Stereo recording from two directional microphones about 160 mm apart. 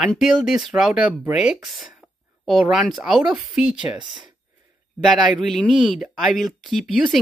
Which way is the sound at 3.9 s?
30° right (ahead or behind).